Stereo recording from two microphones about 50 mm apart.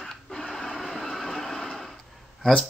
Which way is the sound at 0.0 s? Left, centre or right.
Centre.